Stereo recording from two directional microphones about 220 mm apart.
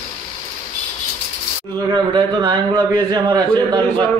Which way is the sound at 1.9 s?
20° right (ahead or behind).